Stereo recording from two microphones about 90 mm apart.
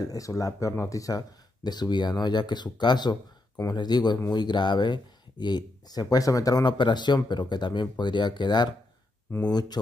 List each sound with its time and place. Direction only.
0.0 s speech: 40° left (ahead or behind)
6.8 s speech: 55° left (ahead or behind)